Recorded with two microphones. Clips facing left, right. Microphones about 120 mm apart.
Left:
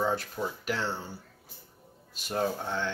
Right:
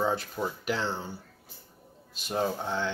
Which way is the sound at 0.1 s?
20° right (ahead or behind).